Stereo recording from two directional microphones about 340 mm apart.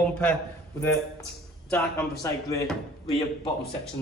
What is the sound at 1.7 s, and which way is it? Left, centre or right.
Speech, centre.